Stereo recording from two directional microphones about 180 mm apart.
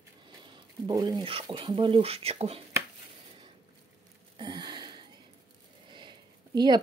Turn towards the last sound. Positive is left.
turn(degrees=-25)  # may be behind; listen again after turning